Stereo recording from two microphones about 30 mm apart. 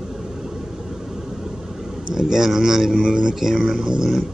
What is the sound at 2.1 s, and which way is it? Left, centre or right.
A man's voice, centre.